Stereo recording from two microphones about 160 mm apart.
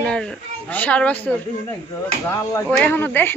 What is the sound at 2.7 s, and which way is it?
Speech, 10° left (ahead or behind).